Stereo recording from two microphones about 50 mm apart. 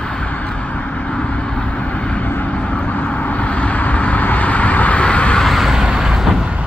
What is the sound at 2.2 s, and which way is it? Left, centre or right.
Vehicle, left.